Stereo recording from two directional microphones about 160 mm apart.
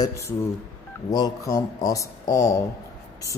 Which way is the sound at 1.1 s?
20° left (ahead or behind).